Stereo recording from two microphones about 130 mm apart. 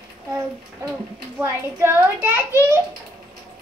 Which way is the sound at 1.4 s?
15° right (ahead or behind).